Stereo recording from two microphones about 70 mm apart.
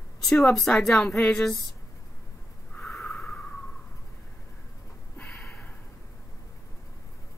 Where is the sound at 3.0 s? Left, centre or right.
Centre.